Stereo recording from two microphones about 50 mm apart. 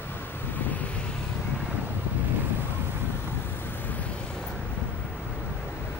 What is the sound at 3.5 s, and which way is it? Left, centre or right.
Vehicle, left.